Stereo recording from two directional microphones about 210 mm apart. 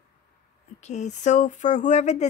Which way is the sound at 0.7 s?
35° left (ahead or behind).